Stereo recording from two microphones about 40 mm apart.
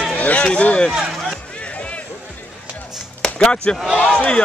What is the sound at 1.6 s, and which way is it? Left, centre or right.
Music, left.